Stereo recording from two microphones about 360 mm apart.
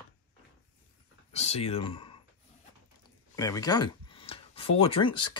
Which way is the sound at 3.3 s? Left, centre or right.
Centre.